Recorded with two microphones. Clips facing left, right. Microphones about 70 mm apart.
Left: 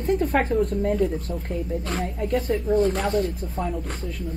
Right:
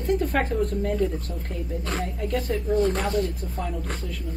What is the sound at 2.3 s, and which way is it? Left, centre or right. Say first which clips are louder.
Speech: left 3 dB; left.